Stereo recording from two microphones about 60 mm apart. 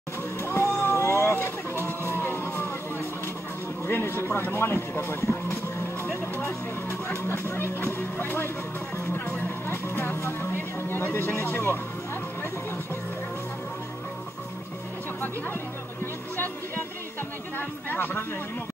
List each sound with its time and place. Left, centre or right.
0.4 s vehicle: left
1.9 s music: left
3.8 s speech: left
17.6 s speech: left